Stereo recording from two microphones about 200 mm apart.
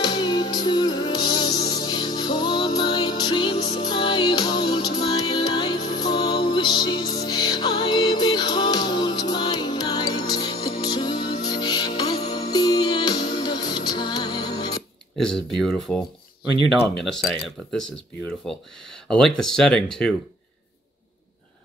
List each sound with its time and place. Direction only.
0.0 s music: 20° left (ahead or behind)
15.1 s speech: 5° left (ahead or behind)